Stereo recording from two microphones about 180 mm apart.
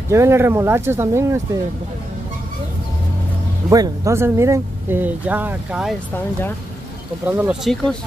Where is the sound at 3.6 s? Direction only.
20° right (ahead or behind).